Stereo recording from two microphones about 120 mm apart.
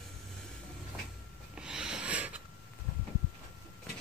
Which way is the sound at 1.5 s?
5° right (ahead or behind).